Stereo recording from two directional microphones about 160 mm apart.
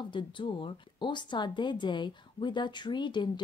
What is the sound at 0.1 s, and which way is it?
A woman's voice, 30° left (ahead or behind).